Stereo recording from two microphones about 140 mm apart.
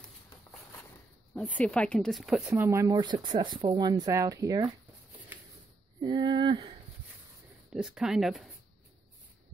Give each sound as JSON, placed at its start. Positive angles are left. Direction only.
{"t": 1.3, "sound": "speech", "side_deg": 5}
{"t": 2.5, "sound": "speech", "side_deg": -20}
{"t": 3.0, "sound": "speech", "side_deg": -30}
{"t": 5.9, "sound": "a sound", "side_deg": -35}
{"t": 7.7, "sound": "speech", "side_deg": -5}